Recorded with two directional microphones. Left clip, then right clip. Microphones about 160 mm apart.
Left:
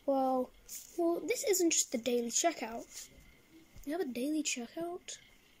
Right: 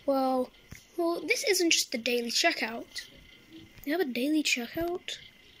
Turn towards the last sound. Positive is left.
turn(degrees=5)  # may be behind; listen again after turning